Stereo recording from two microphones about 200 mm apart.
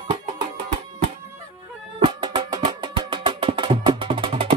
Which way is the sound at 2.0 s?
25° right (ahead or behind).